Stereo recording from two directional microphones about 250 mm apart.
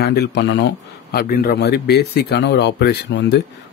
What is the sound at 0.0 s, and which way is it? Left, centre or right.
A man's voice, left.